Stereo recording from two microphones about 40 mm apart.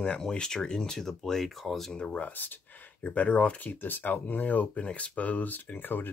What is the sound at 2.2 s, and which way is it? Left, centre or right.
Speech, left.